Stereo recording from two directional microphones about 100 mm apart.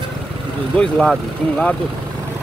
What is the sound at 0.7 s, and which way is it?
Speech, 10° left (ahead or behind).